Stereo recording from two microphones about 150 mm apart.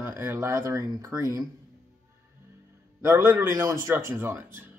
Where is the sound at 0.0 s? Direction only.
15° right (ahead or behind).